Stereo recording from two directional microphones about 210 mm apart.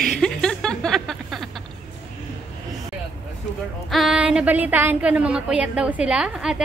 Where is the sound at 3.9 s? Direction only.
5° right (ahead or behind).